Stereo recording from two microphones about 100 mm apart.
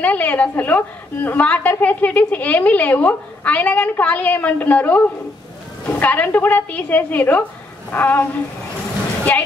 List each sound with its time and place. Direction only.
0.0 s a woman's voice: 15° left (ahead or behind)